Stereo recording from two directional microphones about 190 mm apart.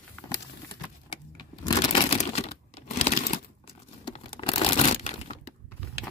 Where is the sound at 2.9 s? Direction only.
35° left (ahead or behind).